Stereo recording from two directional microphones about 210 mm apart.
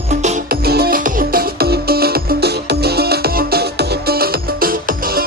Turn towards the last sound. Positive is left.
turn(degrees=-45)  # may be behind; listen again after turning